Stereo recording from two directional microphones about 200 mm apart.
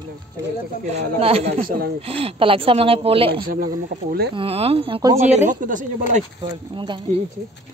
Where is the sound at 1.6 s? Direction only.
45° right (ahead or behind).